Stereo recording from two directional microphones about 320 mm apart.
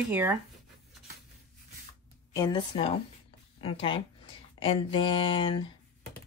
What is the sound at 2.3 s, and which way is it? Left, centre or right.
A woman's voice, centre.